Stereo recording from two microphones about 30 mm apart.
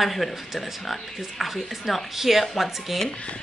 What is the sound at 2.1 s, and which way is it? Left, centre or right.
Speech, centre.